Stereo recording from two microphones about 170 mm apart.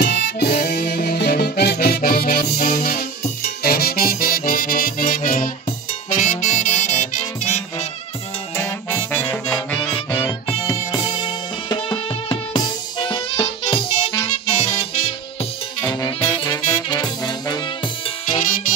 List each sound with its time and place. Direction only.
0.0 s music: 70° left (ahead or behind); by 7.6 s 45° left (ahead or behind)
8.5 s music: 15° left (ahead or behind)
10.2 s music: 25° left (ahead or behind)
15.8 s saxophone: 25° left (ahead or behind)
18.3 s music: 45° left (ahead or behind)